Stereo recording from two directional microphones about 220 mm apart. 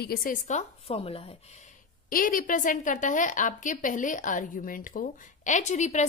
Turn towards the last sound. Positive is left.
turn(degrees=30)  # may be behind; listen again after turning